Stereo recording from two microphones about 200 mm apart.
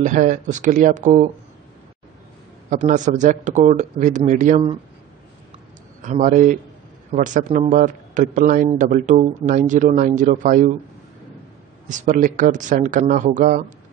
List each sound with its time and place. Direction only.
0.0 s speech: 40° right (ahead or behind)
2.7 s speech: 40° right (ahead or behind)
6.0 s speech: 40° right (ahead or behind)
11.9 s speech: 40° right (ahead or behind)